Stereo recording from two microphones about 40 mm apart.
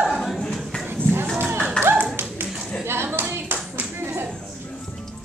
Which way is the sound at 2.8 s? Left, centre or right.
Right.